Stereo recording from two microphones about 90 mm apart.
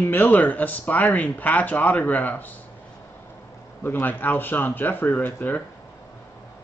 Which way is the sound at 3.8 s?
20° left (ahead or behind).